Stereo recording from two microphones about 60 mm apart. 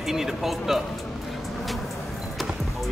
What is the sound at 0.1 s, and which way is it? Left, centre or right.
Speech, centre.